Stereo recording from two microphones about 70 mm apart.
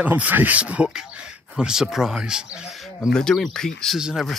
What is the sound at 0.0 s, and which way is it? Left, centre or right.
Speech, right.